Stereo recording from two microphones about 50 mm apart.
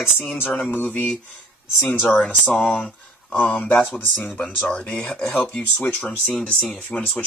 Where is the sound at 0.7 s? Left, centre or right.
Left.